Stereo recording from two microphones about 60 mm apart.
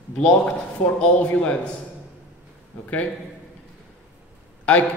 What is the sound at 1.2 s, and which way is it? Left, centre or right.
Speech, left.